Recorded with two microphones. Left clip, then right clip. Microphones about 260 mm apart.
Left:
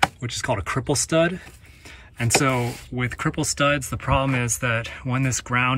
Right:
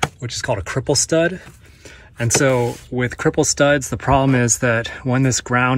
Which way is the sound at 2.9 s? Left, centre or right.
Centre.